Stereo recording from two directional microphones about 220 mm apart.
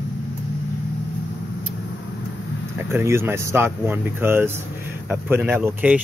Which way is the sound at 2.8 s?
10° right (ahead or behind).